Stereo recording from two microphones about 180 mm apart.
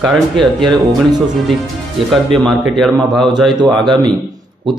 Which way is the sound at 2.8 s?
Centre (ahead or behind).